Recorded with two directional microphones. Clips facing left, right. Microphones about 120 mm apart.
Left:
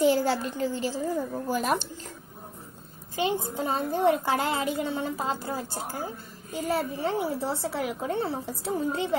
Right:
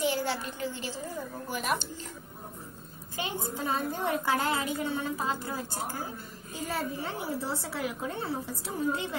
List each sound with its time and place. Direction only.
0.0 s a child's voice: 40° left (ahead or behind)
3.2 s a woman's voice: 25° left (ahead or behind)